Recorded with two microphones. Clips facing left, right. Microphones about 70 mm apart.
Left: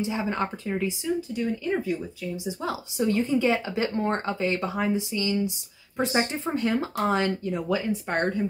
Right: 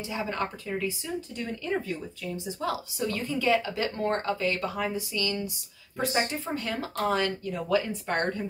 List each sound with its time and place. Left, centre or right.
0.0 s speech: left
1.3 s speech: centre